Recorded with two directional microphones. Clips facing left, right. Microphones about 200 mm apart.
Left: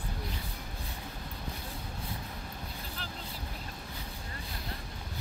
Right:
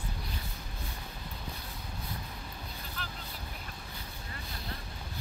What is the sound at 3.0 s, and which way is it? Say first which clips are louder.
Vehicle: right 2 dB; 30° left (ahead or behind).